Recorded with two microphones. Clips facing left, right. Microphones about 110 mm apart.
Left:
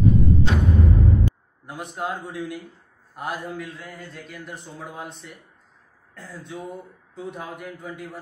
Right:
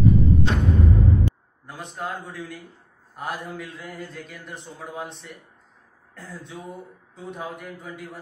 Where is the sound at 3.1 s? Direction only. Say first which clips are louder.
Left 1 dB; centre (ahead or behind).